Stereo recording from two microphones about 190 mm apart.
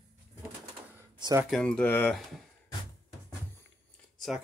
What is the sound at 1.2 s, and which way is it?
Speech, 15° right (ahead or behind).